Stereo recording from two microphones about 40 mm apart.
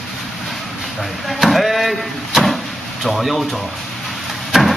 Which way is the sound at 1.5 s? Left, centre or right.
Centre.